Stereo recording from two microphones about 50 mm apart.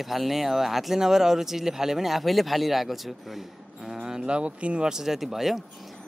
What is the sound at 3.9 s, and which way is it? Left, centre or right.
Speech, centre.